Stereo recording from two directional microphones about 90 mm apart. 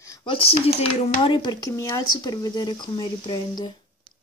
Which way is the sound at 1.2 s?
65° left (ahead or behind).